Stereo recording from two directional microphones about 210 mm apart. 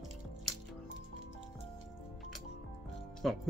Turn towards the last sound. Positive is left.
turn(degrees=0)  # may be behind; listen again after turning